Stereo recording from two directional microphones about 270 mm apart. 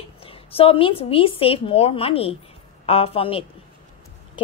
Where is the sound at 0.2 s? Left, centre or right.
Left.